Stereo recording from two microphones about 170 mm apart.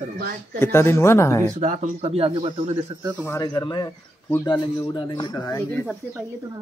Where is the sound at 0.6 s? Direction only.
15° left (ahead or behind).